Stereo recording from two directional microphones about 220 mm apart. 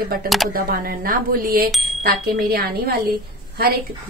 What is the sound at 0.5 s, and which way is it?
A woman's voice, 40° right (ahead or behind).